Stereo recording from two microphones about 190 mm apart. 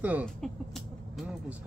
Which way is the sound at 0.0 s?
10° right (ahead or behind).